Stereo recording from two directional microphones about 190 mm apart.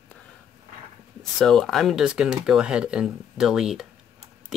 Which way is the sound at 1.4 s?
Centre (ahead or behind).